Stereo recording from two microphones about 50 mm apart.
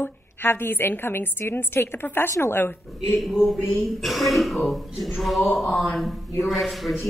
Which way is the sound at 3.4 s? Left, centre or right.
Centre.